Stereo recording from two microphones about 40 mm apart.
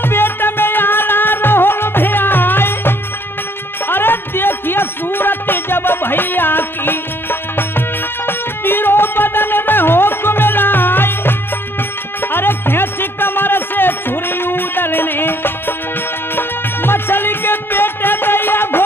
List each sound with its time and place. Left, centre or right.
0.0 s music: left